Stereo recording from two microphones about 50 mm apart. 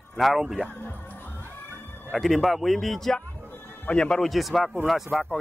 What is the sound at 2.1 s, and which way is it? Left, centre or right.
Speech, centre.